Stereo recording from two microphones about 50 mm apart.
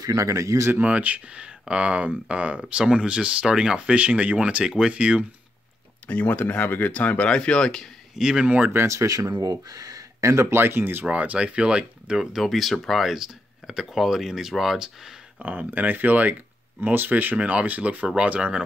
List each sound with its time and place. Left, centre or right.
0.1 s speech: right
0.7 s speech: right
6.0 s speech: left
7.2 s speech: centre
8.2 s speech: centre
8.5 s speech: right
8.8 s speech: right
10.2 s speech: right
10.6 s speech: right
11.1 s speech: right
12.4 s speech: centre
15.4 s speech: right